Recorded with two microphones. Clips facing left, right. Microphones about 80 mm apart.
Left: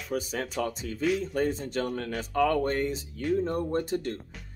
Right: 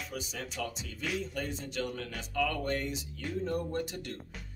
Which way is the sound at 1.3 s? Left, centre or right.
Left.